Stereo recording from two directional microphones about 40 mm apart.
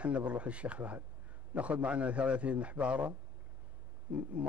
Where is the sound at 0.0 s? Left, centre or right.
Right.